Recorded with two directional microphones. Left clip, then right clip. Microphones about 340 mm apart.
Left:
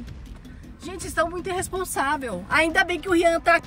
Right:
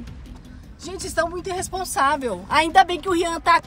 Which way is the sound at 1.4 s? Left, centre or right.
Right.